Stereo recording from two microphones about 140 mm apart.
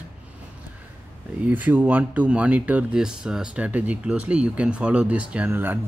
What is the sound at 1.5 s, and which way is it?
Speech, 10° right (ahead or behind).